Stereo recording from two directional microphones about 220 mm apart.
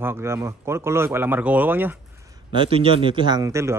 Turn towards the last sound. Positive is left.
turn(degrees=-15)  # may be behind; listen again after turning